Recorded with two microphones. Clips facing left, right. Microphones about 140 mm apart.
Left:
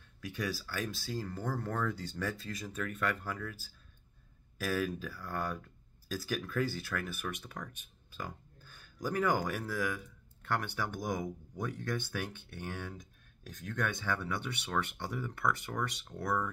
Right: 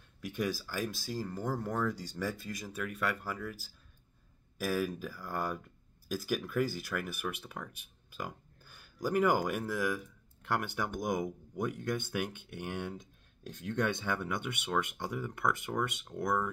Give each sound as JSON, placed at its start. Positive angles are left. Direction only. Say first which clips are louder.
{"t": 0.3, "sound": "speech", "louder": "right 3 dB", "side_deg": -15}
{"t": 8.2, "sound": "a sound", "louder": "right 2 dB", "side_deg": -10}
{"t": 9.7, "sound": "speech", "louder": "right 2 dB", "side_deg": -10}